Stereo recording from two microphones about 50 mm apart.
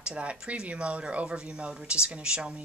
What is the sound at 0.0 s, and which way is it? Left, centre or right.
Speech, right.